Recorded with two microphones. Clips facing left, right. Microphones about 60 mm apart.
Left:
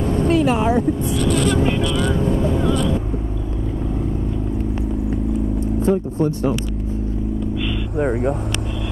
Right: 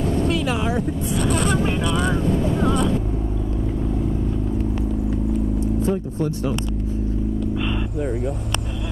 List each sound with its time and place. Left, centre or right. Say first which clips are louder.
0.1 s vehicle: left 7 dB; left
5.6 s vehicle: left 3 dB; left
8.0 s speech: left 7 dB; left